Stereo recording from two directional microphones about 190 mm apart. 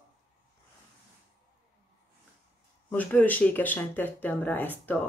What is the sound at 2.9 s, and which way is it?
Speech, 10° left (ahead or behind).